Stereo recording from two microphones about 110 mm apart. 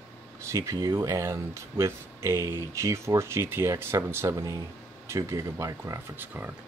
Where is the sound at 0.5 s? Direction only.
30° right (ahead or behind).